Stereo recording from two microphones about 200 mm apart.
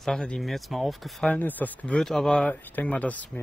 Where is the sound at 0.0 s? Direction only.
5° left (ahead or behind).